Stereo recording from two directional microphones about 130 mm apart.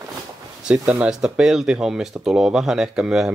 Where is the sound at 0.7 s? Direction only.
10° right (ahead or behind).